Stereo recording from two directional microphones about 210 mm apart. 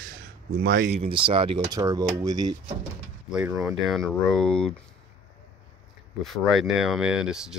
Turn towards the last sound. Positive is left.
turn(degrees=-5)  # may be behind; listen again after turning